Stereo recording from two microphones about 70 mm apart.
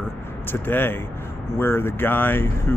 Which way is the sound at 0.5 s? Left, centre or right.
Left.